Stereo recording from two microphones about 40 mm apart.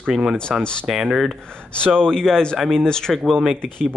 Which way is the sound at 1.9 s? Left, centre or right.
Centre.